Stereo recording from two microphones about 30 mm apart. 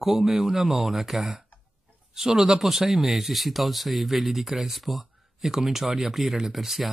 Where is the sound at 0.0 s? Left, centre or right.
Centre.